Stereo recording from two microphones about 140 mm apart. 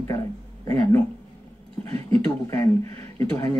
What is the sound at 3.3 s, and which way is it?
Speech, 20° left (ahead or behind).